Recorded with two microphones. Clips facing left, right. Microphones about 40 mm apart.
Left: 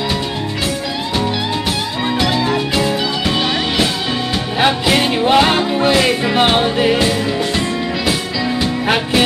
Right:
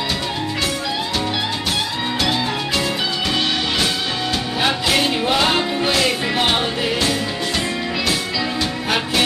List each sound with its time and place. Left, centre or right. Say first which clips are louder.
2.7 s music: left 4 dB; centre